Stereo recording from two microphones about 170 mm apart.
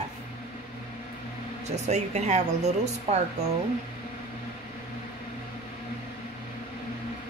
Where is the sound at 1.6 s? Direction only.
40° right (ahead or behind).